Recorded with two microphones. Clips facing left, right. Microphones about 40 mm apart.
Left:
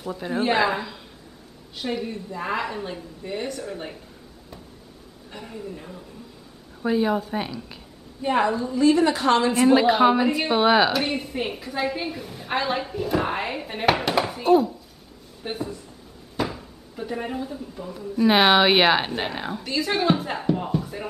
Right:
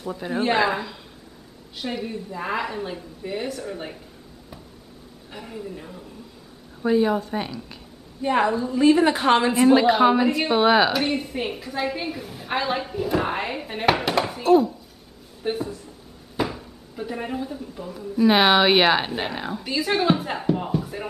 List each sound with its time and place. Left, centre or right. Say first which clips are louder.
0.0 s a woman's voice: even; centre
5.3 s a woman's voice: right 1 dB; centre
8.7 s a woman's voice: right 2 dB; centre
9.6 s a woman's voice: even; centre